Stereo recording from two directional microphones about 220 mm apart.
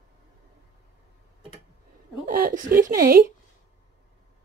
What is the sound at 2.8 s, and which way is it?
Speech, 40° right (ahead or behind).